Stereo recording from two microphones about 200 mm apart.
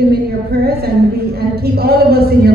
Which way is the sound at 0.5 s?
50° right (ahead or behind).